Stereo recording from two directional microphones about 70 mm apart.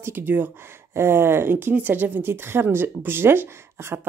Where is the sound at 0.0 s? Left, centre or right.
Right.